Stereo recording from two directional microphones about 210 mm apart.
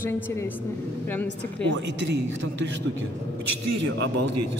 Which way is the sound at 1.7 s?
55° right (ahead or behind).